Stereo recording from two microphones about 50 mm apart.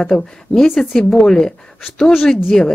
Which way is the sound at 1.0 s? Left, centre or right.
Centre.